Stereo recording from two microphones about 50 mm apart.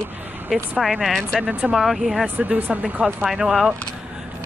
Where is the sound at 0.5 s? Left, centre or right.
Centre.